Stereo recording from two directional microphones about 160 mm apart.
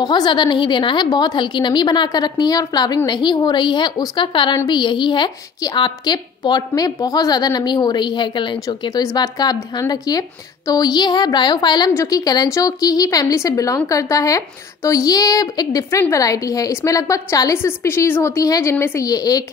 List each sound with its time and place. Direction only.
0.0 s a woman's voice: 30° left (ahead or behind)